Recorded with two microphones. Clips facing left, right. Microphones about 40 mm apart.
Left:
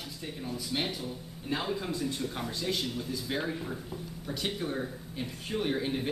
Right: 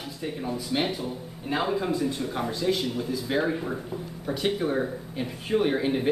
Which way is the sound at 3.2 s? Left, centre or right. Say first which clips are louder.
Right 8 dB; centre.